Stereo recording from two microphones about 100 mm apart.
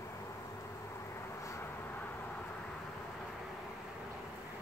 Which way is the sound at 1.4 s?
30° left (ahead or behind).